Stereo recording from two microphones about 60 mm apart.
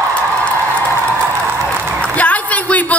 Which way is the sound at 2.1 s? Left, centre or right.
Left.